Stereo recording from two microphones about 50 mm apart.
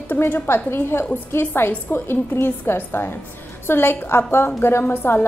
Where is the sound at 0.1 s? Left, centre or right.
Left.